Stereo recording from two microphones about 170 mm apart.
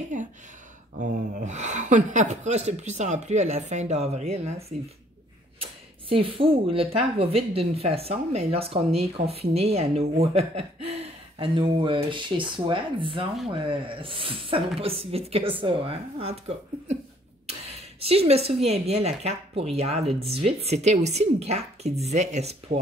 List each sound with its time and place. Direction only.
0.1 s a sound: 50° right (ahead or behind)
0.9 s speech: 45° right (ahead or behind)
18.0 s speech: 35° right (ahead or behind)